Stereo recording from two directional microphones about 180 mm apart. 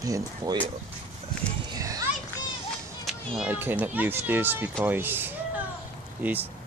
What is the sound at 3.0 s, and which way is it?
A child's voice, 5° right (ahead or behind).